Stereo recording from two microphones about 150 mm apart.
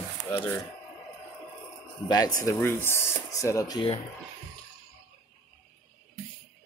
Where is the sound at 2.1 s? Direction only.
25° left (ahead or behind).